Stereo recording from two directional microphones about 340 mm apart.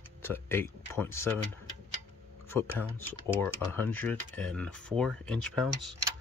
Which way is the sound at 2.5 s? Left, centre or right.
Centre.